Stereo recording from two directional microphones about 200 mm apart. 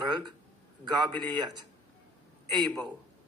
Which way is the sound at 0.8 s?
20° right (ahead or behind).